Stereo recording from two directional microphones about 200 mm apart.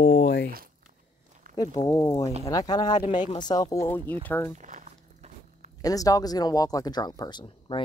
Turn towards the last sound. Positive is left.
turn(degrees=25)  # may be behind; listen again after turning